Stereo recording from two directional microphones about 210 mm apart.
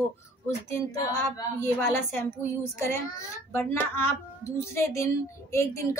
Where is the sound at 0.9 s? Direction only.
10° left (ahead or behind).